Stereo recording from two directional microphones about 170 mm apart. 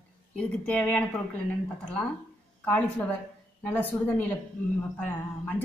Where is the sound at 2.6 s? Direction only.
10° left (ahead or behind).